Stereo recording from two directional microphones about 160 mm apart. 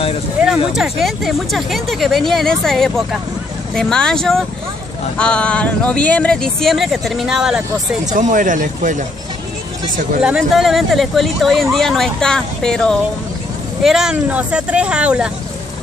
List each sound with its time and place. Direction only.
0.7 s speech: centre (ahead or behind)
8.1 s speech: 55° right (ahead or behind)
10.2 s speech: 5° right (ahead or behind)